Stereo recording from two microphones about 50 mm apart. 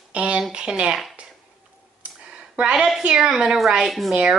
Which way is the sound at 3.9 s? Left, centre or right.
Centre.